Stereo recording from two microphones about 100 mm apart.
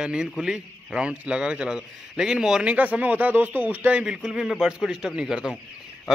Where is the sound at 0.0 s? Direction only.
10° right (ahead or behind).